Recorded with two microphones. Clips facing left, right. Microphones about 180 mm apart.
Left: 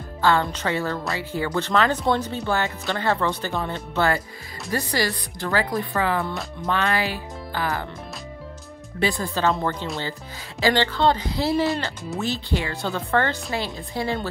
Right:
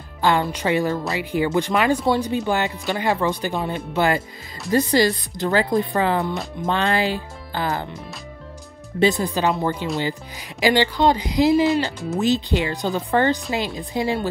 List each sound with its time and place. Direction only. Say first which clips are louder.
0.2 s speech: right 1 dB; 15° right (ahead or behind)
9.0 s speech: right 4 dB; 20° right (ahead or behind)